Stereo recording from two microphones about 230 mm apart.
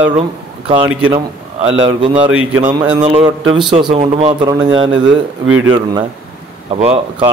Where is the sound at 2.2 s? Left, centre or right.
Right.